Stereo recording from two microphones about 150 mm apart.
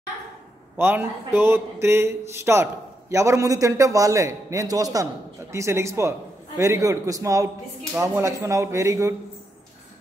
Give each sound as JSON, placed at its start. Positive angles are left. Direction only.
{"t": 0.7, "sound": "speech", "side_deg": -15}